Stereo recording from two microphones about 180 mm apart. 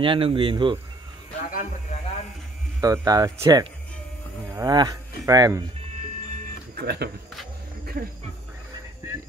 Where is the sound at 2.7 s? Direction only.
15° right (ahead or behind).